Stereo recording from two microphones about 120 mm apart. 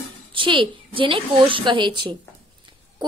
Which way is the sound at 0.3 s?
45° right (ahead or behind).